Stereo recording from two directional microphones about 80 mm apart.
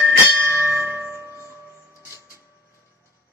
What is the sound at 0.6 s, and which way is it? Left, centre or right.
Music, right.